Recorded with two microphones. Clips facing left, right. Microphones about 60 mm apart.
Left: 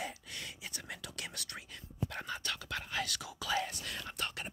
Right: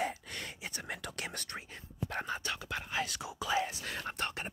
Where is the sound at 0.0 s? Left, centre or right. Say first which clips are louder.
Right 6 dB; right.